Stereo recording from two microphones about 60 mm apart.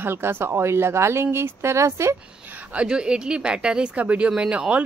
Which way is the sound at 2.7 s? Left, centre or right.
Centre.